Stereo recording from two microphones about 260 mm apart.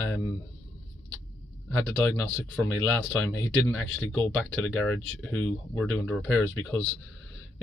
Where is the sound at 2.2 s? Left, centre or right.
Centre.